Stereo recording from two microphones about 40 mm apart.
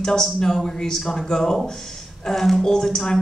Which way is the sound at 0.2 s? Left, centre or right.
Centre.